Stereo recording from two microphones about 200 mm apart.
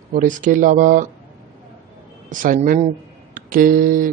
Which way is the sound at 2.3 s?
40° right (ahead or behind).